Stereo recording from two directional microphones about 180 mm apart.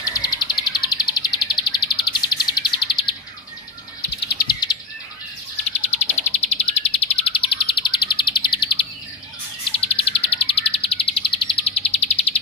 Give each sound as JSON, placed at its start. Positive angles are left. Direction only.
{"t": 0.0, "sound": "bird", "side_deg": 20}
{"t": 4.5, "sound": "bird", "side_deg": 25}
{"t": 5.9, "sound": "bird", "side_deg": 40}